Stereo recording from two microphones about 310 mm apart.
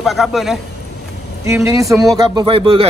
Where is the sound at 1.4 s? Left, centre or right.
Centre.